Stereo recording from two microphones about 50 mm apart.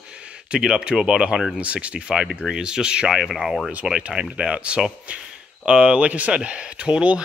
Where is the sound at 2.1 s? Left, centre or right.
Centre.